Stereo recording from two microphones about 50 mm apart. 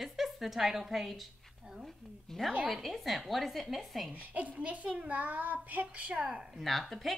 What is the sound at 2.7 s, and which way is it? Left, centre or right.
A woman's voice, centre.